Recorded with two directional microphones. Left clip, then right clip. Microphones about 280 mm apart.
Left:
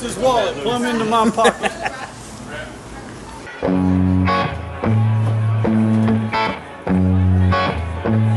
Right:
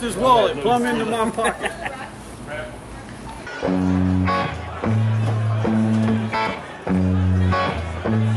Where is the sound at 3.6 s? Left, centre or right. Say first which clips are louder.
Left 3 dB; centre.